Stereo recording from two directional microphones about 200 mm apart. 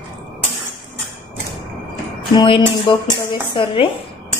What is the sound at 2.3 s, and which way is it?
Speech, 25° left (ahead or behind).